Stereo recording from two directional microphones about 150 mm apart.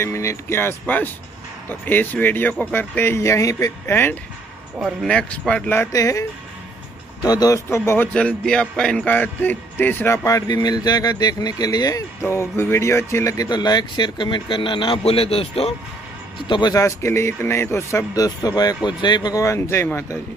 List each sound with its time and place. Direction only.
0.0 s speech: 20° left (ahead or behind)
7.2 s a man's voice: 25° left (ahead or behind); by 15.7 s 40° left (ahead or behind)
16.4 s a man's voice: 30° left (ahead or behind)